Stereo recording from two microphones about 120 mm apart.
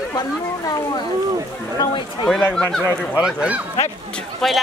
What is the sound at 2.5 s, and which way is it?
Speech, 5° left (ahead or behind).